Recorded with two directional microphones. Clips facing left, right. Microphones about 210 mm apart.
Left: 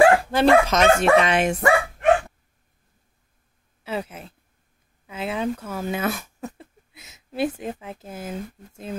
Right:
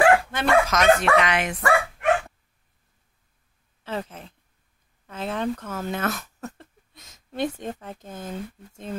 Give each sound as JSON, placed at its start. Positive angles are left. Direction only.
{"t": 0.2, "sound": "speech", "side_deg": 30}
{"t": 3.8, "sound": "a sound", "side_deg": 10}
{"t": 5.0, "sound": "speech", "side_deg": 10}